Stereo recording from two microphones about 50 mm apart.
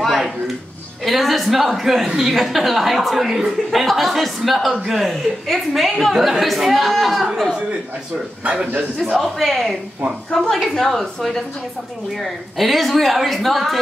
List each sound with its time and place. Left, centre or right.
0.0 s a sound: centre
1.0 s a woman's voice: centre
8.5 s a man's voice: right
9.2 s a woman's voice: centre